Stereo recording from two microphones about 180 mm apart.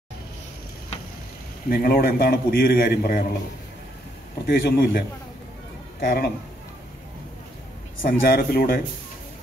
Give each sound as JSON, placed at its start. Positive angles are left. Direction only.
{"t": 1.7, "sound": "a man's voice", "side_deg": 55}
{"t": 4.5, "sound": "a man's voice", "side_deg": 55}
{"t": 8.0, "sound": "a man's voice", "side_deg": 55}